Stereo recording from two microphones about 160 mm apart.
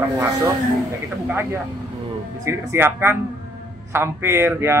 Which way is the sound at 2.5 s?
15° right (ahead or behind).